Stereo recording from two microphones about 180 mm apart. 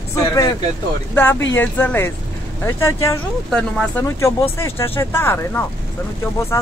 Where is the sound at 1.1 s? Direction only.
10° left (ahead or behind).